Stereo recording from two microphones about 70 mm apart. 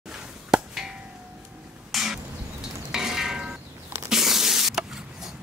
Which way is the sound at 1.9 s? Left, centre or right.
Centre.